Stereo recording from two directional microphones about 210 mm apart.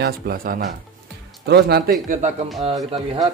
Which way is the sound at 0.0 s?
45° right (ahead or behind).